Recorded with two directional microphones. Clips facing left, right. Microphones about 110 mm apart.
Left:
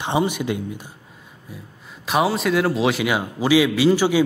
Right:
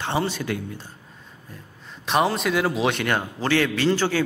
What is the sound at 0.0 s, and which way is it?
A man's voice, 15° left (ahead or behind).